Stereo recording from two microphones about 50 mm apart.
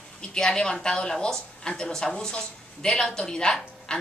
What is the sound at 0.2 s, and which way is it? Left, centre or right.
Speech, centre.